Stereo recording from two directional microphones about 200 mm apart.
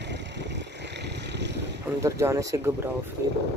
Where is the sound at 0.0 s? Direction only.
60° right (ahead or behind).